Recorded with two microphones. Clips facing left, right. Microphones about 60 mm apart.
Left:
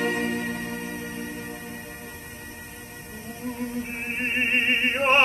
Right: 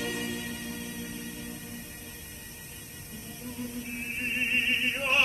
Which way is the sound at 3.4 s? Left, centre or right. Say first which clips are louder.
Left 7 dB; left.